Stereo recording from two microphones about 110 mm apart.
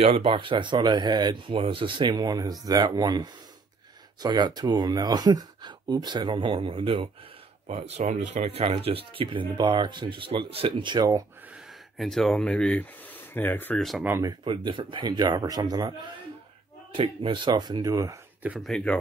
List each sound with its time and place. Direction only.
0.0 s speech: 55° right (ahead or behind)
7.6 s speech: 80° right; by 11.2 s 40° right (ahead or behind)
11.5 s speech: centre (ahead or behind); by 13.7 s 15° left (ahead or behind)
13.7 s speech: centre (ahead or behind)
14.4 s speech: 50° right (ahead or behind)
16.9 s speech: 55° right (ahead or behind); by 18.2 s 30° right (ahead or behind)
18.6 s speech: 5° left (ahead or behind)